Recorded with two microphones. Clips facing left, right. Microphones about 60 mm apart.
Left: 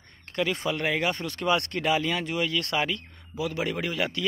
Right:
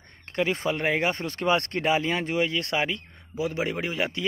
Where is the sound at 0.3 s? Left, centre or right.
Right.